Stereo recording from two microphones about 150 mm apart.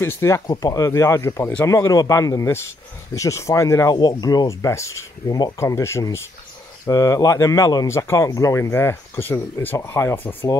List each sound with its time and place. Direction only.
0.0 s speech: 15° left (ahead or behind)